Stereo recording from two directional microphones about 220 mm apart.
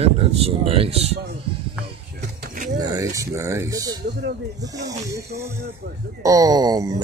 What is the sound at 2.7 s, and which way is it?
Speech, 15° right (ahead or behind).